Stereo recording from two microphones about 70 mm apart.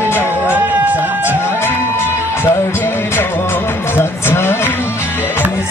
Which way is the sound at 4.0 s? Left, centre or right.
Left.